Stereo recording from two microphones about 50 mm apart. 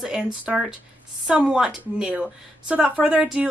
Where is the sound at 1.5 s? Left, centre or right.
Centre.